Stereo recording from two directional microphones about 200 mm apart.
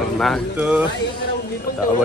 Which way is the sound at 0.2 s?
5° right (ahead or behind).